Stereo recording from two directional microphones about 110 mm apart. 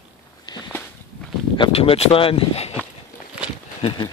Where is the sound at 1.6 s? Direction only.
60° left (ahead or behind).